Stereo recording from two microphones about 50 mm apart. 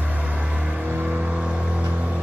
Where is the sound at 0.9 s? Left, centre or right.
Right.